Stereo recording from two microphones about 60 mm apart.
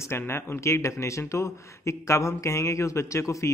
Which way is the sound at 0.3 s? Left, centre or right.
Left.